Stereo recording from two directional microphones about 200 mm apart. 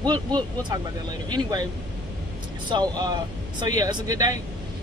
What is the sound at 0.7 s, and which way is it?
Speech, 20° right (ahead or behind).